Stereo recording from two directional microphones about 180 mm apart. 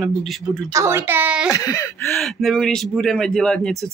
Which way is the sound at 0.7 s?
15° right (ahead or behind).